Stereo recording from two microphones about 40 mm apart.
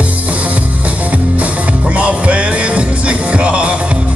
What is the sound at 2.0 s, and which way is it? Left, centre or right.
Music, right.